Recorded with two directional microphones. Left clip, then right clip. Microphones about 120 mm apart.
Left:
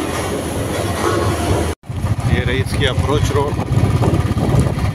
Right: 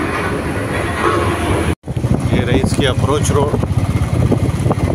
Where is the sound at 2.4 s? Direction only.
20° right (ahead or behind).